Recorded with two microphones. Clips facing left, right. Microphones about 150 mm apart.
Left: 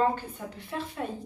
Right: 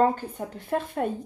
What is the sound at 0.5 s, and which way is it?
Speech, 50° right (ahead or behind).